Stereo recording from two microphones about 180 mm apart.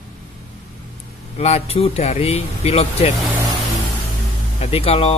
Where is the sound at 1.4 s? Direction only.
35° left (ahead or behind).